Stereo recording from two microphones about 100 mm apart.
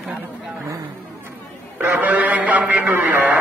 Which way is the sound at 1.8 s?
20° right (ahead or behind).